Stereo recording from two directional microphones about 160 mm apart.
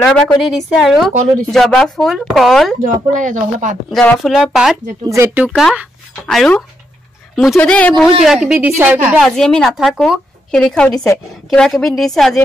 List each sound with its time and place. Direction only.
0.0 s speech: 5° left (ahead or behind)
2.8 s speech: 55° right (ahead or behind)
3.9 s speech: 5° left (ahead or behind)
5.0 s a woman's voice: 15° right (ahead or behind)
6.2 s speech: 5° left (ahead or behind)
8.5 s a woman's voice: 10° right (ahead or behind)
9.2 s speech: 5° left (ahead or behind)